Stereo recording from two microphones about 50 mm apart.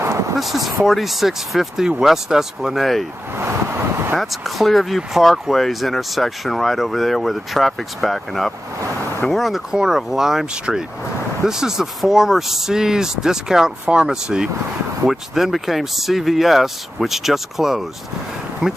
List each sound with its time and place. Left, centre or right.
0.0 s a sound: right
0.4 s speech: centre
3.3 s vehicle: right
4.2 s speech: centre